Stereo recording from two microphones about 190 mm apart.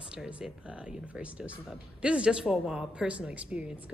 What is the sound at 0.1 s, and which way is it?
Speech, 5° right (ahead or behind).